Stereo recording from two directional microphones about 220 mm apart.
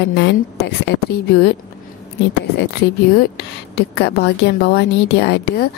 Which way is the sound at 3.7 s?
50° left (ahead or behind).